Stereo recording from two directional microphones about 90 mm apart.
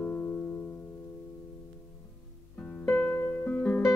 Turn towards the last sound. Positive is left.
turn(degrees=15)  # may be behind; listen again after turning